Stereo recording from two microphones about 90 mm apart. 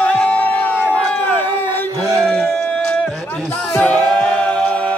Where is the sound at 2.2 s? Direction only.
10° left (ahead or behind).